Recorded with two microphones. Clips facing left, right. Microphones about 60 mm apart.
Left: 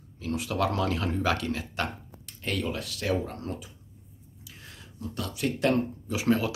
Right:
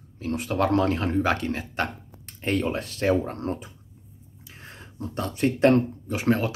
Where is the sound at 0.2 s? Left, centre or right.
Right.